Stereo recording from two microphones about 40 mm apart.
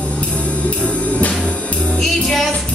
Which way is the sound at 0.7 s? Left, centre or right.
Left.